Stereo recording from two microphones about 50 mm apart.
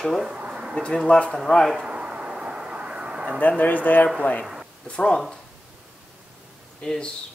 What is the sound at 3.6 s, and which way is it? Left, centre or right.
Speech, left.